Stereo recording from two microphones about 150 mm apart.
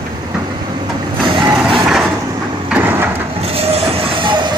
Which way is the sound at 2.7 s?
10° right (ahead or behind).